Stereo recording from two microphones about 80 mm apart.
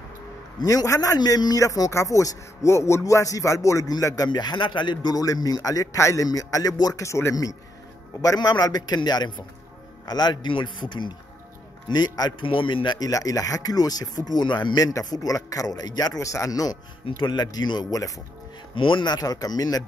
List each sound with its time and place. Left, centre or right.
0.7 s a man's voice: left
4.3 s a man's voice: left
5.1 s a man's voice: left
8.2 s a man's voice: left
11.9 s a man's voice: left
13.0 s a man's voice: left
14.9 s a man's voice: left
17.2 s a man's voice: left
18.8 s a man's voice: left